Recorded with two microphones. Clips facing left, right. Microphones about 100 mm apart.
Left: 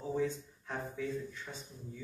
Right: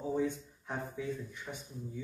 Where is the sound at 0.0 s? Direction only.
15° right (ahead or behind).